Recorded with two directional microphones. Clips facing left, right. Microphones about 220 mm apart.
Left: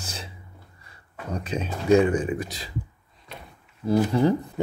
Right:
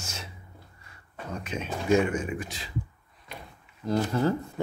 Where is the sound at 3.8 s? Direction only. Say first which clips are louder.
Left 5 dB; 10° left (ahead or behind).